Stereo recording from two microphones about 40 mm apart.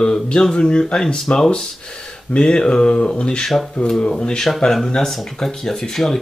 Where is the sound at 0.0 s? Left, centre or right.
Centre.